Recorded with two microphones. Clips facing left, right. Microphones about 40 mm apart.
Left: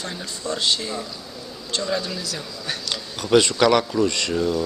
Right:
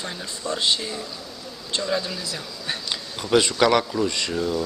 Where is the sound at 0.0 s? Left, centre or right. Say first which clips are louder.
Left 1 dB; centre.